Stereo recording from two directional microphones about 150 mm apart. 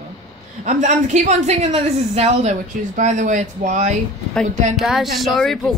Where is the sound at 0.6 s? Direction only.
55° right (ahead or behind).